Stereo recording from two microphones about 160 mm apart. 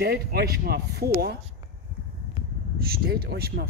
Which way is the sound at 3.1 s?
85° right.